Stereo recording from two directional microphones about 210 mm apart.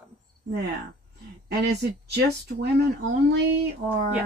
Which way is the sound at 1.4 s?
50° right (ahead or behind).